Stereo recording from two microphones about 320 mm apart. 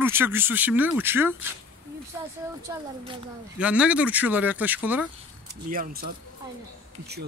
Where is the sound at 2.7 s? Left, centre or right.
Centre.